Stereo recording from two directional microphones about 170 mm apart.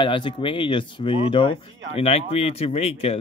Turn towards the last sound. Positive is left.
turn(degrees=35)  # may be behind; listen again after turning